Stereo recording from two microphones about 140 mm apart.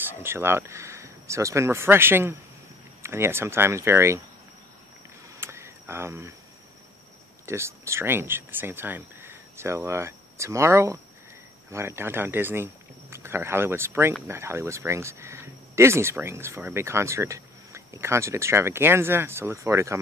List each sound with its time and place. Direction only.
0.2 s speech: 15° right (ahead or behind)
5.4 s a sound: 20° right (ahead or behind)
7.4 s speech: 20° right (ahead or behind)